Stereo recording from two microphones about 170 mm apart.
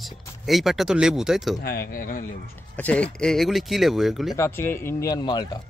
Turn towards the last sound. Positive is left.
turn(degrees=25)  # may be behind; listen again after turning